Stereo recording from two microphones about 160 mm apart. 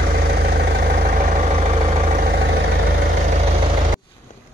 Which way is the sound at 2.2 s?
80° right.